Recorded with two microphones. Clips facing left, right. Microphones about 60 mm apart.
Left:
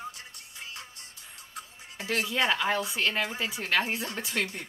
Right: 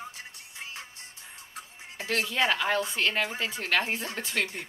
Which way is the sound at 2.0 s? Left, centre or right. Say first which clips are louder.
Even; centre.